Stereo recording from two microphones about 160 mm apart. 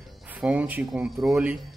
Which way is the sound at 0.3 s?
10° right (ahead or behind).